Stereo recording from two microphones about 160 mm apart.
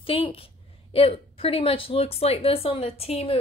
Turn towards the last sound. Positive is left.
turn(degrees=40)  # may be behind; listen again after turning